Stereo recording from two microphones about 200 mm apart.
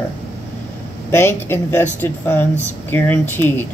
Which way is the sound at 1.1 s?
10° left (ahead or behind).